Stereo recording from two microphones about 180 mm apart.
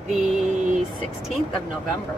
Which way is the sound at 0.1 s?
Centre (ahead or behind).